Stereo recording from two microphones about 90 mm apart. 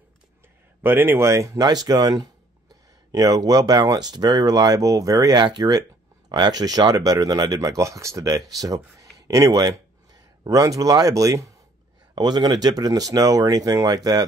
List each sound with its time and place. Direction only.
0.8 s speech: 25° right (ahead or behind)
1.6 s speech: 45° right (ahead or behind)
12.2 s speech: 50° right (ahead or behind)